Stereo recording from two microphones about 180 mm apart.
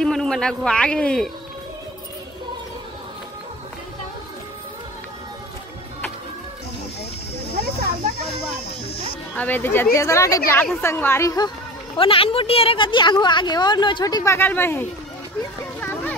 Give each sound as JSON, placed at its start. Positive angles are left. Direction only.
{"t": 0.0, "sound": "a man's voice", "side_deg": 5}
{"t": 9.3, "sound": "a woman's voice", "side_deg": 10}
{"t": 12.0, "sound": "a woman's voice", "side_deg": 30}
{"t": 15.8, "sound": "a sound", "side_deg": 10}